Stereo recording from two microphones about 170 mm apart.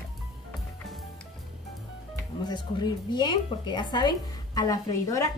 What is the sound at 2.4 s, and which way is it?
A woman's voice, 25° left (ahead or behind).